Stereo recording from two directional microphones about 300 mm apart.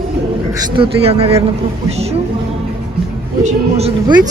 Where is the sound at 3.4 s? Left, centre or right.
Right.